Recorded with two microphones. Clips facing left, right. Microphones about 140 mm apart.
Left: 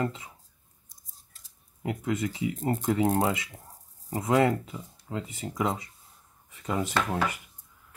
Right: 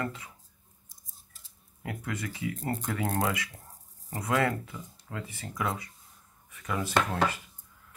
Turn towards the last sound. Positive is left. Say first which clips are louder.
# right 1 dB
turn(degrees=20)  # may be behind; listen again after turning